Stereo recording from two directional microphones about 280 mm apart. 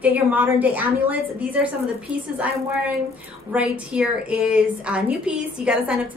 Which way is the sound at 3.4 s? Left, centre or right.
Centre.